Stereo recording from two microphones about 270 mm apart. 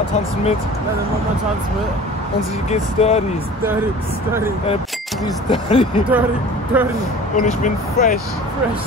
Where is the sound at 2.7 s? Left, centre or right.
Left.